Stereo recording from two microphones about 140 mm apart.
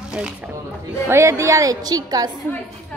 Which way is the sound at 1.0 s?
20° right (ahead or behind).